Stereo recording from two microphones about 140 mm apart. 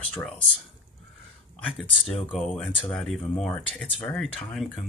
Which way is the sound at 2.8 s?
Centre (ahead or behind).